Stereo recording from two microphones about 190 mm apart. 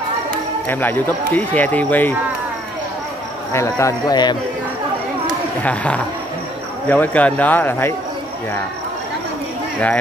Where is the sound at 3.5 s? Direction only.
15° left (ahead or behind).